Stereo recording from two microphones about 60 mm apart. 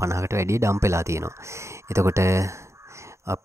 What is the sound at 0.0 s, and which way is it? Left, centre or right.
Speech, right.